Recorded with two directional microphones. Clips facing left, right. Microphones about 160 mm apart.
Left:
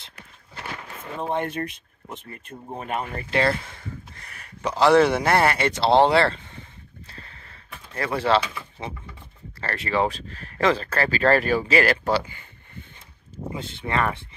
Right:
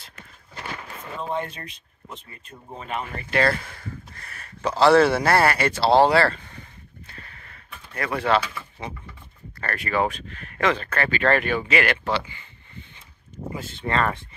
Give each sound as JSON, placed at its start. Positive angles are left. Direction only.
{"t": 1.2, "sound": "speech", "side_deg": 60}
{"t": 3.0, "sound": "speech", "side_deg": 35}
{"t": 3.3, "sound": "speech", "side_deg": 20}
{"t": 7.1, "sound": "a sound", "side_deg": 30}
{"t": 8.4, "sound": "speech", "side_deg": 20}
{"t": 13.6, "sound": "speech", "side_deg": 15}